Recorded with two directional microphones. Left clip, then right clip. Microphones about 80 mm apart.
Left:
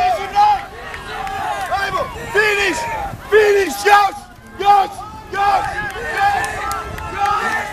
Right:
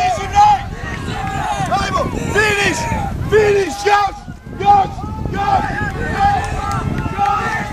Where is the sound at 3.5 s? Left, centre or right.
Left.